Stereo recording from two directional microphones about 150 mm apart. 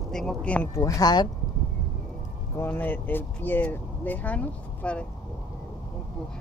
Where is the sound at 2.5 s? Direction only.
15° left (ahead or behind).